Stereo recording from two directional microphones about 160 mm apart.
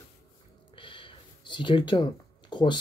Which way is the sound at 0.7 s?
30° left (ahead or behind).